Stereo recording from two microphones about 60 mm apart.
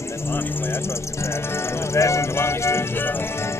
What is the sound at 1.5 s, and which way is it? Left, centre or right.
Speech, left.